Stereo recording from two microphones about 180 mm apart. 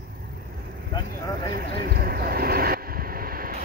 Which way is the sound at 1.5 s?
55° right (ahead or behind).